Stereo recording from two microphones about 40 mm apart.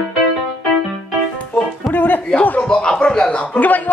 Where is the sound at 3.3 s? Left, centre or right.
Left.